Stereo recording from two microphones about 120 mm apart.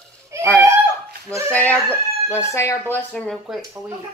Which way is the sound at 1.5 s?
10° left (ahead or behind).